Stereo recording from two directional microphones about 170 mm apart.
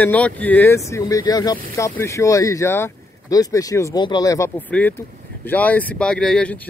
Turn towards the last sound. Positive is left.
turn(degrees=5)  # may be behind; listen again after turning